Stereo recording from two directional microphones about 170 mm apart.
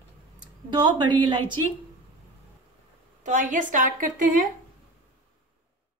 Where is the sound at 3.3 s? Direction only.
50° right (ahead or behind).